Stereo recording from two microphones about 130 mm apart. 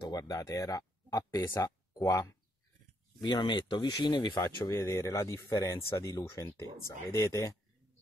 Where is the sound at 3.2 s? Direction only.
35° left (ahead or behind).